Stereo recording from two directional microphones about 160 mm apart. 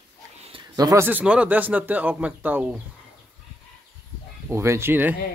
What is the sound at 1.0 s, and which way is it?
Speech, 10° right (ahead or behind).